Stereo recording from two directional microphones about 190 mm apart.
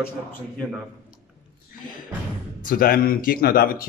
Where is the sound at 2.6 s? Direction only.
50° left (ahead or behind).